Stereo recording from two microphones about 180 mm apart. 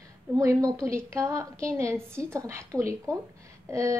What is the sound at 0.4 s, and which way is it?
A woman's voice, 20° right (ahead or behind).